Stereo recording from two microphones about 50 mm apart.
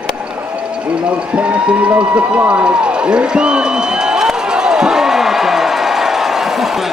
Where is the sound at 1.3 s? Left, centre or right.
Right; by 6.7 s centre.